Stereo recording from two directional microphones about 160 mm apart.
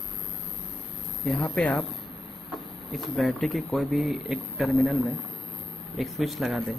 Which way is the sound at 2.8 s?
Centre (ahead or behind).